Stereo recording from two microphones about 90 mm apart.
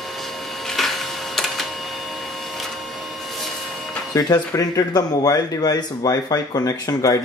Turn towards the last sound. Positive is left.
turn(degrees=40)  # may be behind; listen again after turning